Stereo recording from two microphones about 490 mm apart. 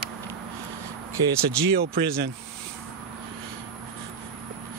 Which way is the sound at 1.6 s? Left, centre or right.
Centre.